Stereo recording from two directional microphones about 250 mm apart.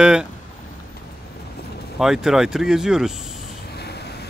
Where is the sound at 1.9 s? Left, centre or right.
Centre.